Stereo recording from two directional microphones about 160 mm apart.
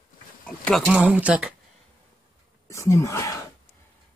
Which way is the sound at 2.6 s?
20° left (ahead or behind).